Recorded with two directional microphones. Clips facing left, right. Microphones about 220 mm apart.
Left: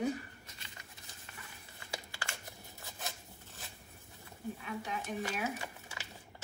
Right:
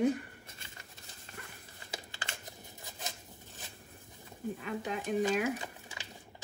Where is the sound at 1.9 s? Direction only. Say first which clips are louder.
Even; 20° right (ahead or behind).